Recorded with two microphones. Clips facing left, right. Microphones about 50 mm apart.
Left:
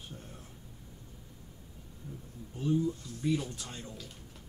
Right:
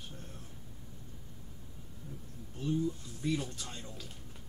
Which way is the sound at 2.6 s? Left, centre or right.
Centre.